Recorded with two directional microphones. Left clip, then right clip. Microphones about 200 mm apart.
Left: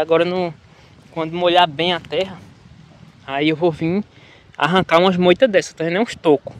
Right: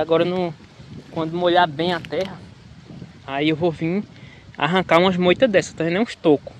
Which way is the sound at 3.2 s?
30° left (ahead or behind).